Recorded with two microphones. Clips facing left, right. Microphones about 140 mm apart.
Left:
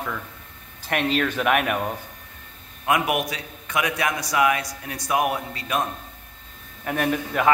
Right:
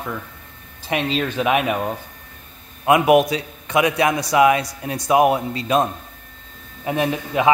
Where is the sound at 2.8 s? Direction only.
25° right (ahead or behind).